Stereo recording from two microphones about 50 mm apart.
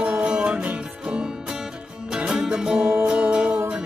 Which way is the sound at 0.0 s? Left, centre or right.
Right.